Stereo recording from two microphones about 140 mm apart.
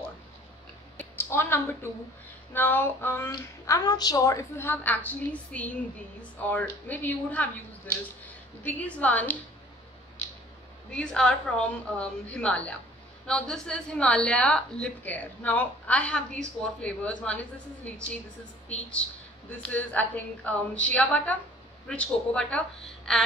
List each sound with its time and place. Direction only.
0.9 s a woman's voice: 15° left (ahead or behind)
3.3 s a woman's voice: 25° left (ahead or behind)
8.6 s a woman's voice: 10° left (ahead or behind)
10.9 s a woman's voice: 5° left (ahead or behind)